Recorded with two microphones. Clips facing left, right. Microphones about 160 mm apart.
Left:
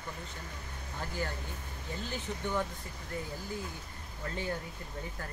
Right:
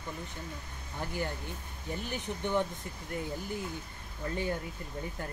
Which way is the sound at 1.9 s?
15° right (ahead or behind).